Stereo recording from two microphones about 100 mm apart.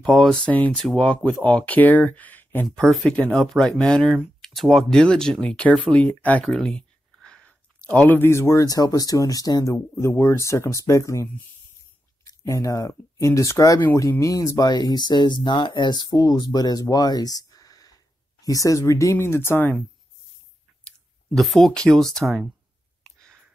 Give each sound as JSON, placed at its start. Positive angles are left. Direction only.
{"t": 0.0, "sound": "speech", "side_deg": 5}
{"t": 2.8, "sound": "speech", "side_deg": 5}
{"t": 6.4, "sound": "speech", "side_deg": 5}
{"t": 12.3, "sound": "speech", "side_deg": 35}
{"t": 21.4, "sound": "speech", "side_deg": 0}